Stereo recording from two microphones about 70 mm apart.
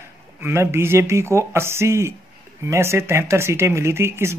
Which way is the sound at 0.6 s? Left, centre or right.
Right.